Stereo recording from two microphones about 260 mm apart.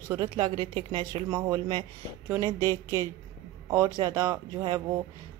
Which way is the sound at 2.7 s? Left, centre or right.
Centre.